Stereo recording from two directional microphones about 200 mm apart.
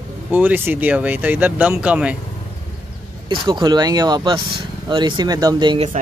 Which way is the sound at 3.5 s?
20° right (ahead or behind).